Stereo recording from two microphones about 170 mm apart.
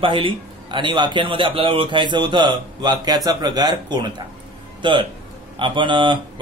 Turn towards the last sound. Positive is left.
turn(degrees=-30)  # may be behind; listen again after turning